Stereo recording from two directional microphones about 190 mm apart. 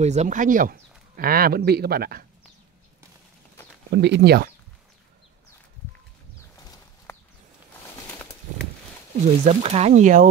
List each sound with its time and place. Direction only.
0.0 s speech: 35° right (ahead or behind); by 2.2 s 55° right (ahead or behind)
3.9 s speech: 60° right (ahead or behind)
6.5 s a sound: 15° left (ahead or behind)
9.4 s speech: 35° right (ahead or behind)